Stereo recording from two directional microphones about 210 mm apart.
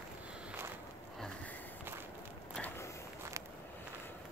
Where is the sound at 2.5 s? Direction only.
5° left (ahead or behind).